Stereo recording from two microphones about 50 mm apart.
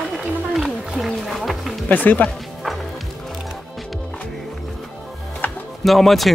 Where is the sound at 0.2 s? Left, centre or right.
Centre.